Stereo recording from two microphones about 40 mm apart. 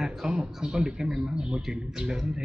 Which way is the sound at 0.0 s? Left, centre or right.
Centre.